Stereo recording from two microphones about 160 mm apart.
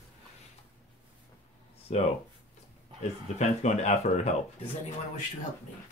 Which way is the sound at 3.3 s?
45° left (ahead or behind).